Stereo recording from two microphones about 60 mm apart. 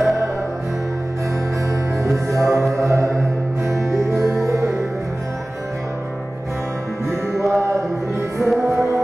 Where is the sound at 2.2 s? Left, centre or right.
Right.